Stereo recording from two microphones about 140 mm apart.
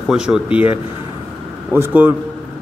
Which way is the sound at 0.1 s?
5° right (ahead or behind).